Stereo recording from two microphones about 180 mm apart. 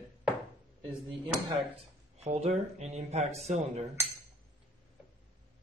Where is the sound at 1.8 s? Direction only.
35° right (ahead or behind).